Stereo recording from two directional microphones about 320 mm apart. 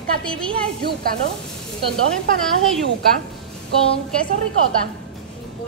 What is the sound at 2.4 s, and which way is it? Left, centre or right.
Speech, centre.